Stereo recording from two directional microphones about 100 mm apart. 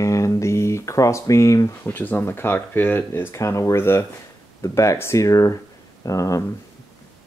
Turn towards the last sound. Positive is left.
turn(degrees=35)  # may be behind; listen again after turning